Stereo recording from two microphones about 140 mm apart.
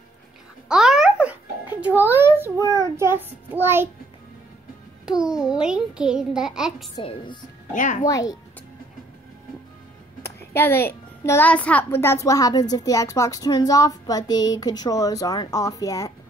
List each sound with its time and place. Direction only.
0.7 s music: 5° right (ahead or behind)
3.0 s a child's voice: 15° right (ahead or behind)
5.0 s a child's voice: 5° right (ahead or behind)
7.0 s speech: 40° left (ahead or behind)
7.7 s a child's voice: 65° left (ahead or behind)
8.1 s a child's voice: 25° left (ahead or behind)
10.5 s a child's voice: 15° left (ahead or behind)